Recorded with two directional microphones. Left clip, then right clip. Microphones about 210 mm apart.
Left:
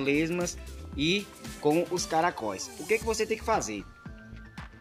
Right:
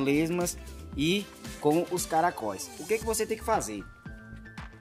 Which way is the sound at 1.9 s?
15° right (ahead or behind).